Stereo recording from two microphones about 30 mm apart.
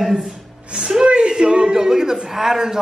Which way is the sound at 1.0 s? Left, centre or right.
Right.